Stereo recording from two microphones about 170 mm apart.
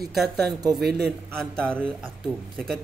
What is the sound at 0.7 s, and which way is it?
Speech, 70° right (ahead or behind).